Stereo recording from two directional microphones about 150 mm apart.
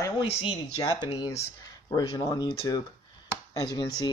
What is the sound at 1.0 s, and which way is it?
Speech, 30° left (ahead or behind).